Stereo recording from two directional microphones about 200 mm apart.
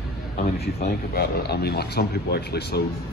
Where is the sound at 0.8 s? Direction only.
50° left (ahead or behind).